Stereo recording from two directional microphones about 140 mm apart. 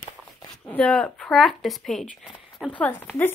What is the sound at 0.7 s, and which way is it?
Speech, 10° left (ahead or behind).